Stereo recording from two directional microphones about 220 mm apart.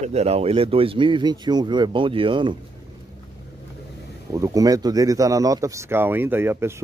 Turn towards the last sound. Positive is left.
turn(degrees=-10)  # may be behind; listen again after turning